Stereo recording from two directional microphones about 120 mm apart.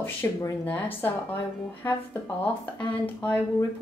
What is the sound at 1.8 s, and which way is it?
A woman's voice, 20° left (ahead or behind).